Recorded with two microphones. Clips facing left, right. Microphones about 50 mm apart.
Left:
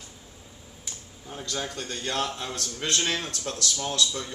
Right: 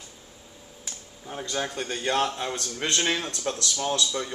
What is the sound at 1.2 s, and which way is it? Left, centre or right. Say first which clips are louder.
Speech: right 3 dB; centre.